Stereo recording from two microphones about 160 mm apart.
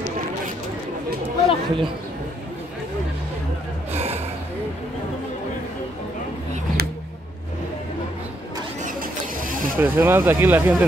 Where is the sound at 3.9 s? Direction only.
40° right (ahead or behind).